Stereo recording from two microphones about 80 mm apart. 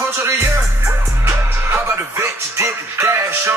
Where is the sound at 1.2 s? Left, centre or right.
Right.